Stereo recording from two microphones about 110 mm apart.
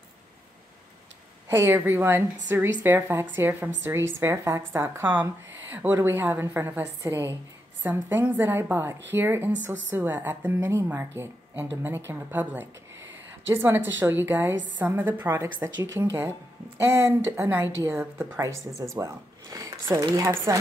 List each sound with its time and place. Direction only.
1.5 s a woman's voice: 20° right (ahead or behind)